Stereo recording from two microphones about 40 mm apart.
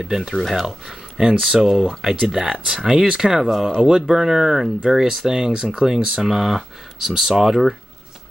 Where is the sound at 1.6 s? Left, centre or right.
Centre.